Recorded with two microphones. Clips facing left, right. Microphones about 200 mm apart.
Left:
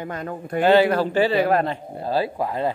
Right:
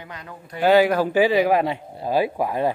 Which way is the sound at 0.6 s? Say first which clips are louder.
Even; 10° right (ahead or behind).